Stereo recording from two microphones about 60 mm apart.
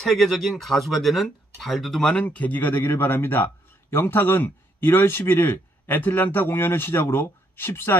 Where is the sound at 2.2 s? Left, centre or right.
Left.